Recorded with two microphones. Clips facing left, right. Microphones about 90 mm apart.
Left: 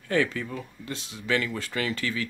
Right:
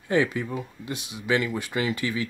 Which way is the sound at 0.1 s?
15° right (ahead or behind).